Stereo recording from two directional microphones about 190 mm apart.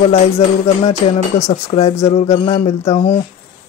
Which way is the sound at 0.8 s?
30° left (ahead or behind).